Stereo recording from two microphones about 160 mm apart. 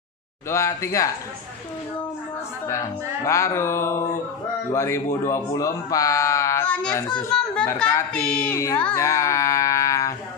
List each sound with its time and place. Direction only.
0.5 s speech: 15° left (ahead or behind)
2.7 s speech: 20° left (ahead or behind)
7.3 s a child's voice: 5° left (ahead or behind)
8.5 s a sound: 15° left (ahead or behind)